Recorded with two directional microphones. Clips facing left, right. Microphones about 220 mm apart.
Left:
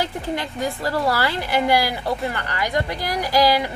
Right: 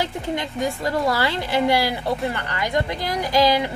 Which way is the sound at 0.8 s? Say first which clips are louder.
Left 1 dB; 20° right (ahead or behind).